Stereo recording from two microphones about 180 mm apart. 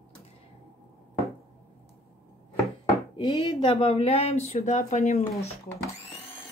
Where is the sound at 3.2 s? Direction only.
30° left (ahead or behind).